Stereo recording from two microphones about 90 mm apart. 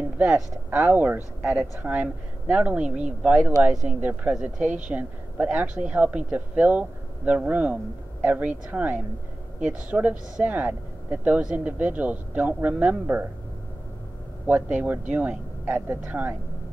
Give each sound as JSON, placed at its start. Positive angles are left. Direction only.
{"t": 0.2, "sound": "speech", "side_deg": -10}
{"t": 4.0, "sound": "speech", "side_deg": -15}
{"t": 14.4, "sound": "speech", "side_deg": -15}